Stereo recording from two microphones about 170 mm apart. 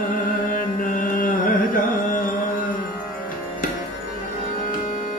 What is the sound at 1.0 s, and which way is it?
Music, 55° left (ahead or behind).